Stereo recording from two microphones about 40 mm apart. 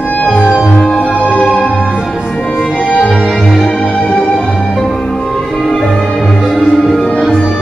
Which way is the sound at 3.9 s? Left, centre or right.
Centre.